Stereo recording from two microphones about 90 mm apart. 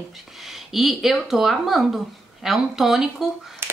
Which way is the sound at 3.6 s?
30° right (ahead or behind).